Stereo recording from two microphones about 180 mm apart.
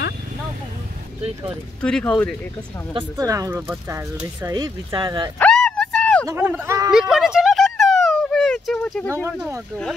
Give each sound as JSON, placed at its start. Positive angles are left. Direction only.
{"t": 1.8, "sound": "speech", "side_deg": 5}
{"t": 2.9, "sound": "speech", "side_deg": -25}
{"t": 4.5, "sound": "speech", "side_deg": -25}
{"t": 5.4, "sound": "a sound", "side_deg": 5}
{"t": 6.2, "sound": "speech", "side_deg": -10}
{"t": 6.9, "sound": "a sound", "side_deg": -5}